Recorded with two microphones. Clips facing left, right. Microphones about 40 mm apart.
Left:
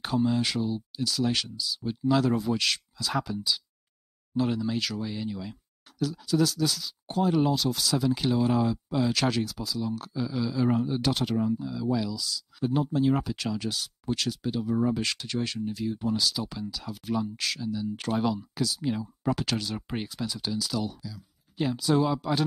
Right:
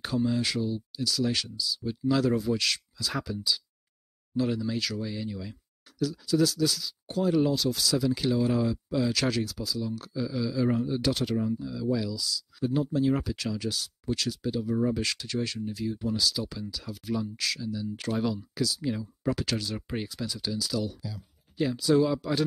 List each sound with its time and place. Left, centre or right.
0.0 s speech: centre
21.0 s speech: right
21.7 s speech: centre